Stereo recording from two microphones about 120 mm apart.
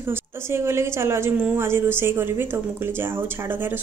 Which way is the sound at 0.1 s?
20° right (ahead or behind).